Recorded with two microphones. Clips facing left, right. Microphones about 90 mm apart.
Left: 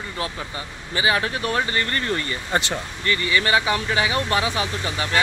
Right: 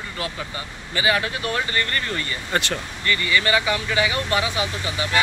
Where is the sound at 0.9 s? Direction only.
30° left (ahead or behind).